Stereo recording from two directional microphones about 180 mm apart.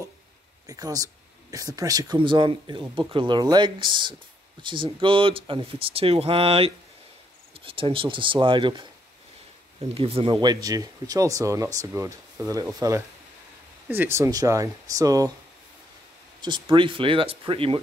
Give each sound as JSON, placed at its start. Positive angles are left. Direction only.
{"t": 0.7, "sound": "speech", "side_deg": -20}
{"t": 16.3, "sound": "speech", "side_deg": -25}